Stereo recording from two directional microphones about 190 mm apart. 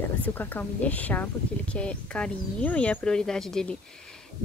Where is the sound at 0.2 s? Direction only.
10° left (ahead or behind).